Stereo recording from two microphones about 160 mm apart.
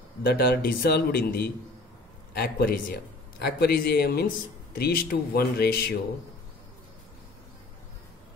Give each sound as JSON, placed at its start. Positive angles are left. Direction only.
{"t": 0.2, "sound": "a man's voice", "side_deg": 90}